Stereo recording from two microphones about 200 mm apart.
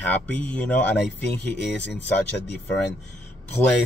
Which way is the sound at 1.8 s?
60° left (ahead or behind).